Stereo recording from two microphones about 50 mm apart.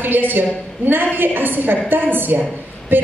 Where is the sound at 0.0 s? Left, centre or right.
Right.